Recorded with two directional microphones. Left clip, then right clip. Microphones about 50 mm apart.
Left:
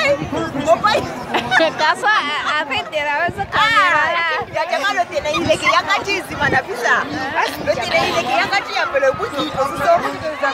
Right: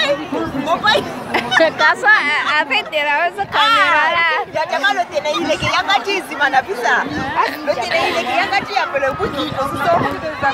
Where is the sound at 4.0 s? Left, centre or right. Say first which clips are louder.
Right 3 dB; right.